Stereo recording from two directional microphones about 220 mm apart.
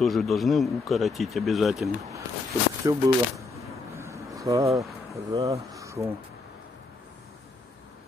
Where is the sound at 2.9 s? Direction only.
15° right (ahead or behind).